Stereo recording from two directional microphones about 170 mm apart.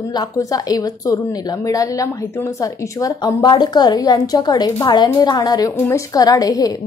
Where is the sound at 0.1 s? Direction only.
20° left (ahead or behind).